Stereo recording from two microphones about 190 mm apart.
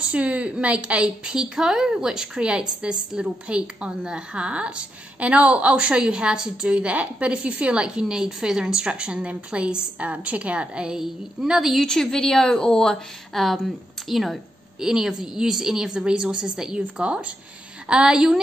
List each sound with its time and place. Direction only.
0.0 s a woman's voice: 5° right (ahead or behind)